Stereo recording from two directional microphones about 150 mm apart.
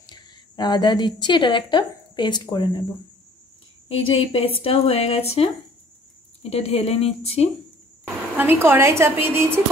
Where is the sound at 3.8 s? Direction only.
40° left (ahead or behind).